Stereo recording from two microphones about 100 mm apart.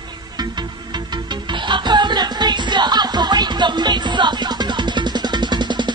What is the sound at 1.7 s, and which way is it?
Music, 50° right (ahead or behind).